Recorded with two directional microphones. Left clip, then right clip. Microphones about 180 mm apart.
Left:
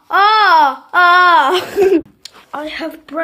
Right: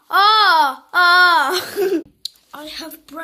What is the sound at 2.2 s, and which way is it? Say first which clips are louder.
Speech: left 6 dB; 50° right (ahead or behind).